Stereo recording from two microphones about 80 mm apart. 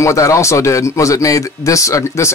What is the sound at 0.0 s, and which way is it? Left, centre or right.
Speech, left.